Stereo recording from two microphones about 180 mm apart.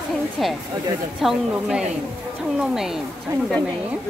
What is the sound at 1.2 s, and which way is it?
Speech, 5° right (ahead or behind).